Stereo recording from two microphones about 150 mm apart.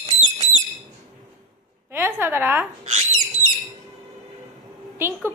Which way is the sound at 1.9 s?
15° right (ahead or behind).